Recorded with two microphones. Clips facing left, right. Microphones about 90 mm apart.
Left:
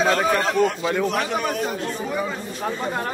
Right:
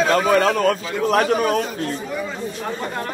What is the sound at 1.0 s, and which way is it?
Speech, 45° right (ahead or behind).